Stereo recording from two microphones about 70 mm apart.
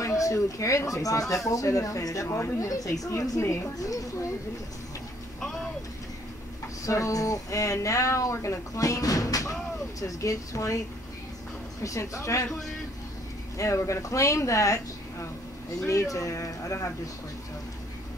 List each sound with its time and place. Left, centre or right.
0.0 s a woman's voice: left
6.9 s speech: left
11.8 s speech: left
13.6 s speech: left